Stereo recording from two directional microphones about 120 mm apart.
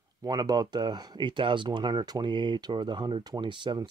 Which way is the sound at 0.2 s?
35° right (ahead or behind).